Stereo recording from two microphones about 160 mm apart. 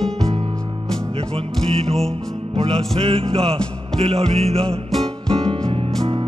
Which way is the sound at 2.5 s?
35° right (ahead or behind).